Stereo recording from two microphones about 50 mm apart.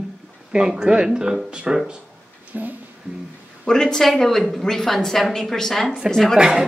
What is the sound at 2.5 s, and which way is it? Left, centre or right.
Speech, right.